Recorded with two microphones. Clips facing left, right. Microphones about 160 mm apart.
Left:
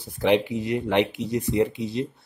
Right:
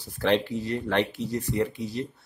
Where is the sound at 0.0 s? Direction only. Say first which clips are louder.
Left 3 dB; 15° left (ahead or behind).